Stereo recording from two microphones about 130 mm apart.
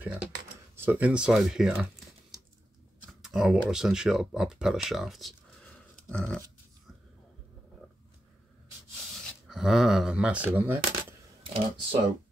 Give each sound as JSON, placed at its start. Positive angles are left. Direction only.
{"t": 0.0, "sound": "typing", "side_deg": -10}
{"t": 0.7, "sound": "speech", "side_deg": -15}
{"t": 3.1, "sound": "speech", "side_deg": -5}
{"t": 6.0, "sound": "dog", "side_deg": 10}
{"t": 9.5, "sound": "speech", "side_deg": -5}
{"t": 11.4, "sound": "speech", "side_deg": -45}